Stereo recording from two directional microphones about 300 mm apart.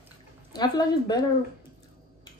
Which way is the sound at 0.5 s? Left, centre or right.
Centre.